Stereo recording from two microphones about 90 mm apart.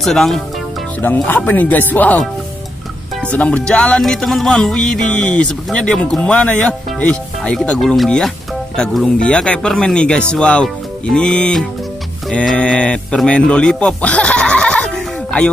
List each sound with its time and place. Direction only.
0.0 s speech: 5° left (ahead or behind)
1.0 s speech: 20° left (ahead or behind)
3.2 s music: 15° left (ahead or behind)
12.3 s speech: 10° left (ahead or behind)